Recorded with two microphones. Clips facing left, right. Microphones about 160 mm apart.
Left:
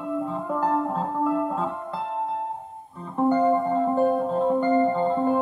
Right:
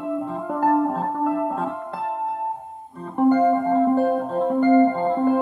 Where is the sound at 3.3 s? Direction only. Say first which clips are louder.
Right 3 dB; 55° right (ahead or behind).